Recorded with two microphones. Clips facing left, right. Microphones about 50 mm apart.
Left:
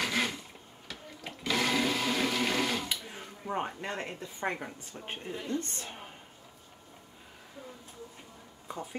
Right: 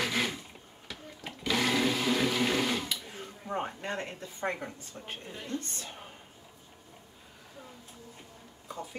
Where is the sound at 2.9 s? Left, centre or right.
Centre.